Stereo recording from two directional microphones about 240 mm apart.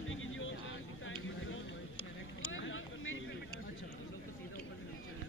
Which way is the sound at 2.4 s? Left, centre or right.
Left.